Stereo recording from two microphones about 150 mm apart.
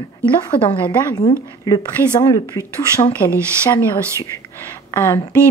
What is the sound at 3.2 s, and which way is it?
Speech, 10° left (ahead or behind).